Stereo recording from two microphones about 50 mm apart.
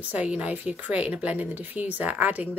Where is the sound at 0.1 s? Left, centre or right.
Right.